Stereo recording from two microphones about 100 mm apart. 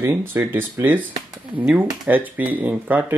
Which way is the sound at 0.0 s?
25° right (ahead or behind).